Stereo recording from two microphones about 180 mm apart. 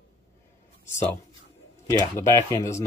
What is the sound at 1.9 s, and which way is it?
Speech, 15° left (ahead or behind).